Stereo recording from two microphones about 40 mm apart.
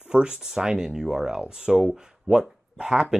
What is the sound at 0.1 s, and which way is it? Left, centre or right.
Speech, centre.